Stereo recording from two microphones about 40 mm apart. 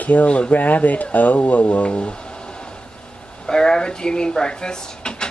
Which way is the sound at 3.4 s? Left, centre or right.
Centre.